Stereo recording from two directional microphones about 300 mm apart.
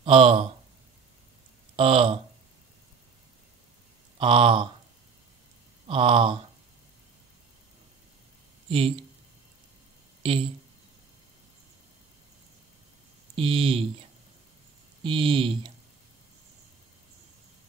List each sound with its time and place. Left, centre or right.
0.0 s speech: centre
1.8 s speech: centre
4.2 s speech: centre
5.9 s speech: centre
8.6 s speech: centre
10.2 s speech: centre
13.4 s speech: centre
15.0 s speech: centre